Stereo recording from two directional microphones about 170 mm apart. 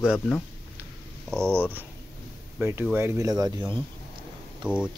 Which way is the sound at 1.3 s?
5° left (ahead or behind).